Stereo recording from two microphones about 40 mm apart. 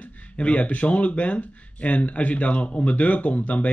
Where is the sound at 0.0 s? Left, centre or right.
Left.